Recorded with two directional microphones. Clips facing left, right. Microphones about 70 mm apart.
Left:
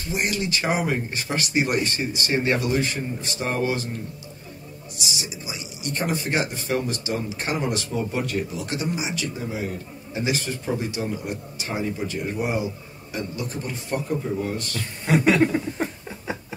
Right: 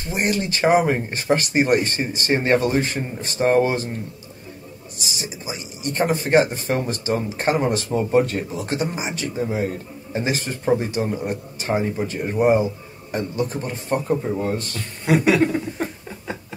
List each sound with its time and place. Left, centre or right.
0.0 s speech: right
4.9 s speech: right
15.0 s a sound: centre